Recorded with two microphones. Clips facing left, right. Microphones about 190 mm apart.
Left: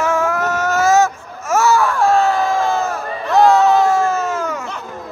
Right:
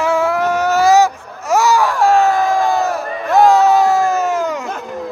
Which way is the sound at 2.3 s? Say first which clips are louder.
Right 2 dB; 15° right (ahead or behind).